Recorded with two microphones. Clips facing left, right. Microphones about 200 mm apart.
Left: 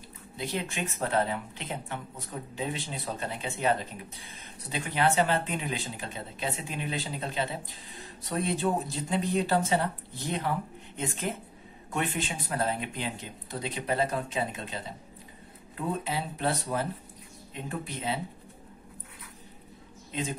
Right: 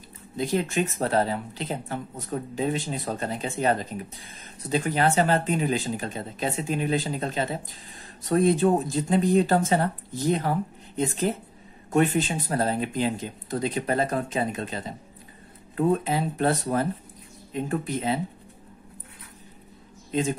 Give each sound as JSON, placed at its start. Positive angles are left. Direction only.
{"t": 0.5, "sound": "speech", "side_deg": -40}